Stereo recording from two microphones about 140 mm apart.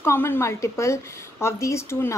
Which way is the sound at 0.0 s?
15° left (ahead or behind).